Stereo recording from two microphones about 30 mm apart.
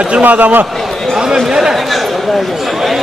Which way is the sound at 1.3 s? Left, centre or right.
Right.